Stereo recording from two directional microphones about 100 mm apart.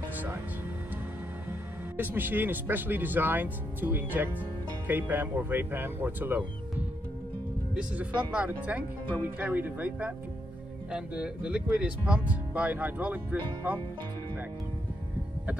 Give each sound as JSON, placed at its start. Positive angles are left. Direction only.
{"t": 2.0, "sound": "speech", "side_deg": -20}
{"t": 7.7, "sound": "speech", "side_deg": -10}